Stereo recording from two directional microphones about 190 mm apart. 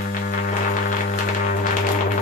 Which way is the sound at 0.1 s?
45° left (ahead or behind).